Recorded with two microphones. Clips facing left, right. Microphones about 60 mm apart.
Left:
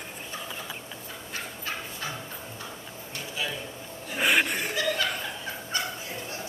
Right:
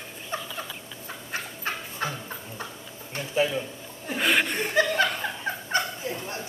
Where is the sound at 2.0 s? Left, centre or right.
Right.